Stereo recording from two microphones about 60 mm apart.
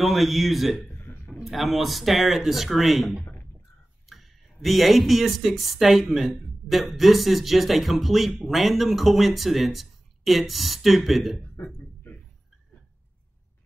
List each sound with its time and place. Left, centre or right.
0.0 s speech: centre
0.8 s a sound: left
1.3 s speech: centre